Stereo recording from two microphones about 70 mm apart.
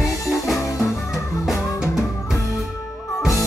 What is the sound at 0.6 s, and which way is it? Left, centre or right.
Music, left.